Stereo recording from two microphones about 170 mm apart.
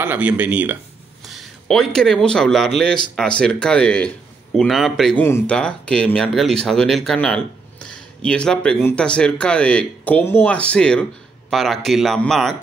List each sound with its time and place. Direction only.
0.0 s a man's voice: 10° right (ahead or behind)